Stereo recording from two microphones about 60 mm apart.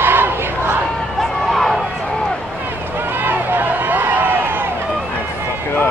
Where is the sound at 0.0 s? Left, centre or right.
Right.